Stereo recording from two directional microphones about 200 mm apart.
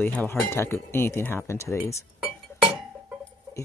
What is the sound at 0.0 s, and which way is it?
Speech, 10° left (ahead or behind).